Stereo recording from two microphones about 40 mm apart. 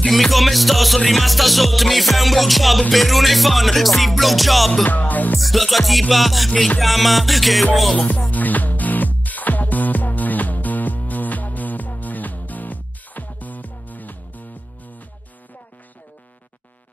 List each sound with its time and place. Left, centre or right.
0.1 s music: centre
4.8 s music: left
5.4 s music: centre
8.3 s music: left